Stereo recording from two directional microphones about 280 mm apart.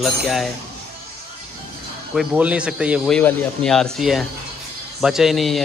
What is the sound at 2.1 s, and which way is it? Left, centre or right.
Speech, centre.